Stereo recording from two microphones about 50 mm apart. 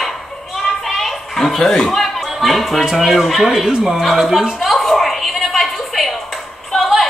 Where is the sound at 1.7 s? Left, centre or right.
Centre.